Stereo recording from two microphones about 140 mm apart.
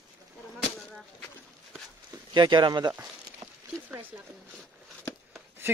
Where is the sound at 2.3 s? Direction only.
35° right (ahead or behind).